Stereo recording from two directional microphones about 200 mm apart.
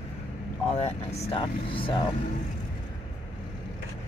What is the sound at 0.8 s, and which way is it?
Speech, 30° left (ahead or behind).